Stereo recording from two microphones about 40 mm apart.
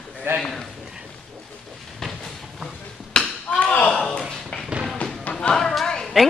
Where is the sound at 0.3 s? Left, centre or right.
Right.